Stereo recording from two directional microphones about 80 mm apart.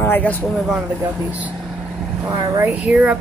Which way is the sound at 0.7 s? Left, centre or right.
Centre.